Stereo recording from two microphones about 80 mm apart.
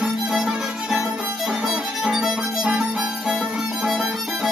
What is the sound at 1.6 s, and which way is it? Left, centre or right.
Music, centre.